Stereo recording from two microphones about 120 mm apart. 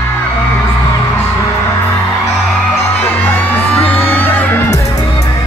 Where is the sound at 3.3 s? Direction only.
15° left (ahead or behind).